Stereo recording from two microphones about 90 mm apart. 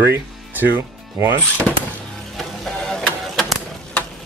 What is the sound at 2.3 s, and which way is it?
Vehicle, 5° left (ahead or behind).